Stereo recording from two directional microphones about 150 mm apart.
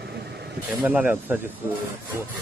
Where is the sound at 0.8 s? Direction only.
10° right (ahead or behind).